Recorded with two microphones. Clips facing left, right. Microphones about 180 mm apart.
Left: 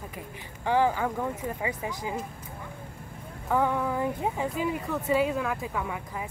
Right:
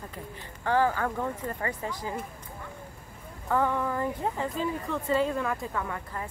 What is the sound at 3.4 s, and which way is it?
Speech, 15° left (ahead or behind).